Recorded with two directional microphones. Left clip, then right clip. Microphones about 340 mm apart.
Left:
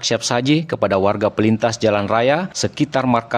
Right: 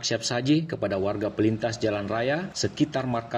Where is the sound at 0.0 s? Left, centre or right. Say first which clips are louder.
Left 9 dB; left.